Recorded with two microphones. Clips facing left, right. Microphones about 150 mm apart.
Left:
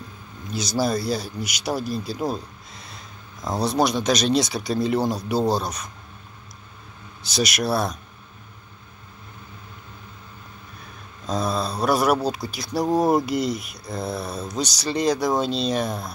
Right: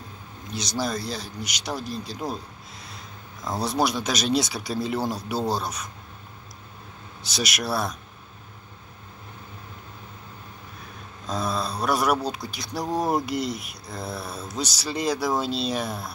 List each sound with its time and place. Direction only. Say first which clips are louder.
0.5 s speech: left 5 dB; 5° left (ahead or behind)
3.4 s speech: left 3 dB; centre (ahead or behind)
7.2 s speech: left 5 dB; centre (ahead or behind)
11.2 s speech: left 3 dB; centre (ahead or behind)